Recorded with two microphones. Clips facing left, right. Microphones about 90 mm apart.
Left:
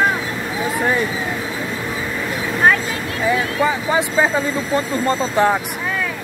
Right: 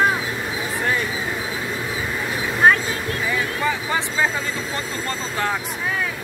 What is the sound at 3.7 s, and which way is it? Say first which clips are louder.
Speech: left 5 dB; 15° left (ahead or behind).